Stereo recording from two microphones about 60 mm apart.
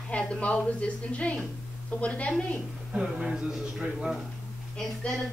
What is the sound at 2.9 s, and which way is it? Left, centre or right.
A man's voice, centre.